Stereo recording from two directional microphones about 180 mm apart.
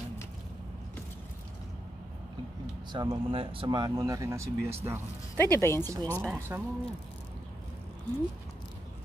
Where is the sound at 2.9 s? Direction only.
25° right (ahead or behind).